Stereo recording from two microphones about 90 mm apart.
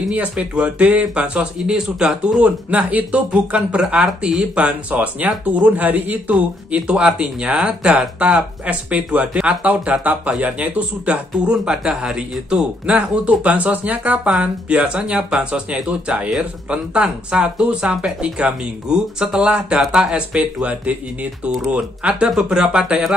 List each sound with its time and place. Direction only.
0.1 s speech: 15° right (ahead or behind)
21.5 s speech: centre (ahead or behind)
21.7 s speech: 10° right (ahead or behind)